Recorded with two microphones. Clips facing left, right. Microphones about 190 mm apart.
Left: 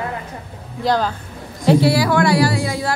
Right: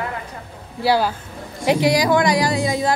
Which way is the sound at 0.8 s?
10° right (ahead or behind).